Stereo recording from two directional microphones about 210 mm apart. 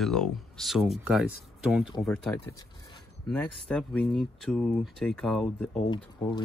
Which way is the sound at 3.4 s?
5° left (ahead or behind).